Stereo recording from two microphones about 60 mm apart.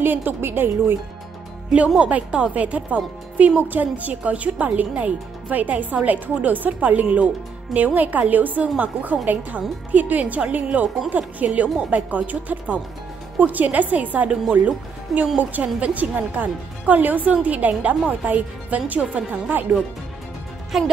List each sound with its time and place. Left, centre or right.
0.0 s a woman's voice: right
2.0 s speech: right
15.3 s speech: right
20.7 s speech: centre